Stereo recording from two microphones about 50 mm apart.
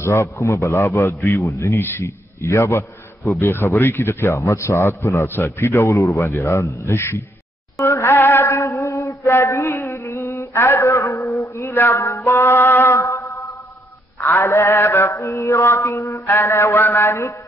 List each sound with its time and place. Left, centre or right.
0.0 s a man's voice: left
2.0 s a man's voice: left
3.3 s mantra: left
4.4 s a man's voice: left
7.0 s a man's voice: left
7.9 s music: left
8.2 s a sound: left
8.5 s a sound: left
9.7 s a sound: left
9.9 s a sound: left
14.3 s mantra: left
15.1 s mantra: left
16.3 s a man's voice: left